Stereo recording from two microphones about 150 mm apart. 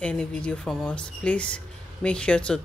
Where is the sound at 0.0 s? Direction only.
5° left (ahead or behind).